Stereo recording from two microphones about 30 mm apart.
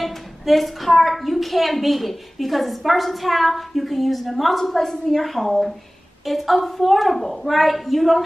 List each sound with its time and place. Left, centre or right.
0.0 s a woman's voice: centre